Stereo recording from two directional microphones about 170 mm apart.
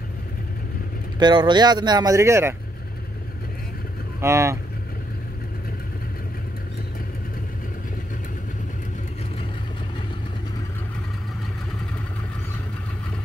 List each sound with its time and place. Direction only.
1.2 s speech: 25° right (ahead or behind)
4.2 s speech: 15° right (ahead or behind)